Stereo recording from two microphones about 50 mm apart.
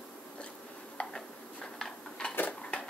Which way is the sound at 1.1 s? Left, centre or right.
Centre.